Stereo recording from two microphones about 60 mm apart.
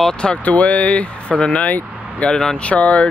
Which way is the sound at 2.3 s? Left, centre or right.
Centre.